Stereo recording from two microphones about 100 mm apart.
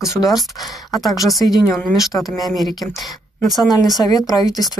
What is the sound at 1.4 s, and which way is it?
Speech, 40° left (ahead or behind).